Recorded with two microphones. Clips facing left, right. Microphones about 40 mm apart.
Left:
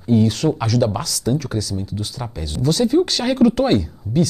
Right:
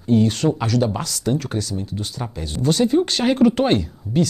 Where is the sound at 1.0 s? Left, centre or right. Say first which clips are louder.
Left 1 dB; right.